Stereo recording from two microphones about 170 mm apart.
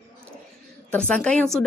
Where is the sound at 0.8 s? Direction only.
5° left (ahead or behind).